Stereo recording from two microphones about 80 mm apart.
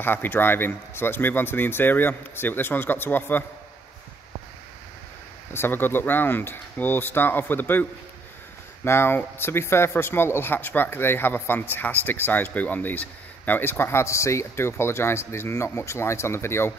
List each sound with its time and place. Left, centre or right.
0.0 s speech: left
5.5 s speech: left
8.8 s speech: left